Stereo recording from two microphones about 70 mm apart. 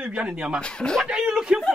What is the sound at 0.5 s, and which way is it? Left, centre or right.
Speech, centre.